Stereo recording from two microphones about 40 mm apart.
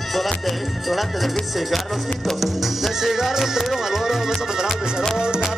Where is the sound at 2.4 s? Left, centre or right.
Centre.